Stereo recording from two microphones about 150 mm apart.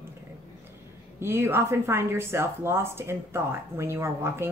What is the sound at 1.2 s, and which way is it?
A woman's voice, 15° right (ahead or behind).